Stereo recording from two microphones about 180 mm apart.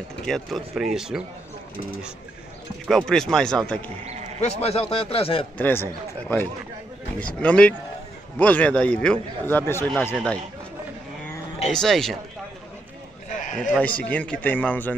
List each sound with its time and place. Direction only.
0.2 s speech: centre (ahead or behind)
2.9 s a man's voice: centre (ahead or behind)
4.0 s a sound: 40° right (ahead or behind)
4.4 s a man's voice: 35° left (ahead or behind)
5.6 s a man's voice: 10° left (ahead or behind)
11.6 s speech: centre (ahead or behind)
13.7 s a man's voice: 10° left (ahead or behind)